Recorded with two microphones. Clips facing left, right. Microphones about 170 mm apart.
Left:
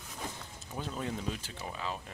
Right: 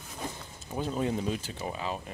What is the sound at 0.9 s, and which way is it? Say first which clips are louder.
Speech: right 7 dB; 20° right (ahead or behind).